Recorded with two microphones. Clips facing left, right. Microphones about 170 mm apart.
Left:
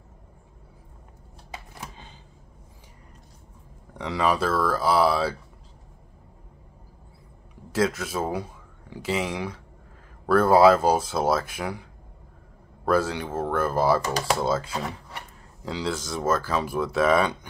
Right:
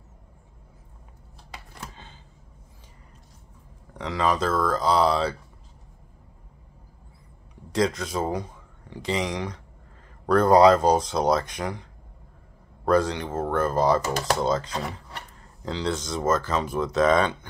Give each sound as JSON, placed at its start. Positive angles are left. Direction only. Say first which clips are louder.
{"t": 1.8, "sound": "a sound", "louder": "left 1 dB", "side_deg": 15}
{"t": 3.9, "sound": "speech", "louder": "even", "side_deg": 10}
{"t": 7.7, "sound": "speech", "louder": "even", "side_deg": 5}